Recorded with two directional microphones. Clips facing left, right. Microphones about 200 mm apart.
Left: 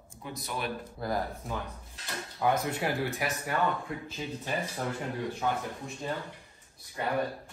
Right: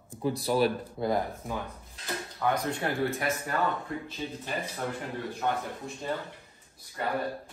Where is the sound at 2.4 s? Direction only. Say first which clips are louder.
Left 1 dB; 10° left (ahead or behind).